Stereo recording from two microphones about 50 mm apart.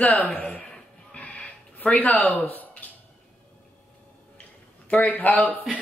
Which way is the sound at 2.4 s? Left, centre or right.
Left.